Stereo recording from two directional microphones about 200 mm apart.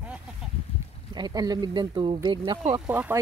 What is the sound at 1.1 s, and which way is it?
Speech, 20° right (ahead or behind).